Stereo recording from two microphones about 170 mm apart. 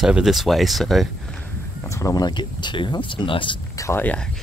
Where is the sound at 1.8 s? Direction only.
20° left (ahead or behind).